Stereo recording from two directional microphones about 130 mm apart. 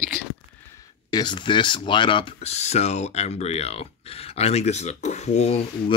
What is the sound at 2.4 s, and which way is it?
Speech, 55° left (ahead or behind).